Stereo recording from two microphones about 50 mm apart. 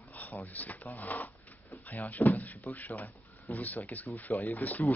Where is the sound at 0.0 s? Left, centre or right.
Left.